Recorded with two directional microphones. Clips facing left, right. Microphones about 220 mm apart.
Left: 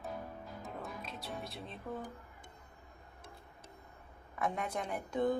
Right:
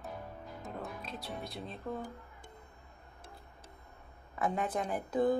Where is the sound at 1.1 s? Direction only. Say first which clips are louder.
Right 2 dB; centre (ahead or behind).